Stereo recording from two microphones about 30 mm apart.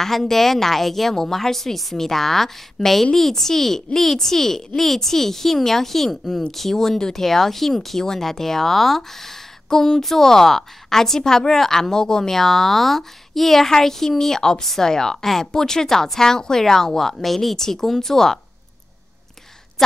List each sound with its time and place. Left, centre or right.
0.0 s a woman's voice: centre
9.7 s a woman's voice: centre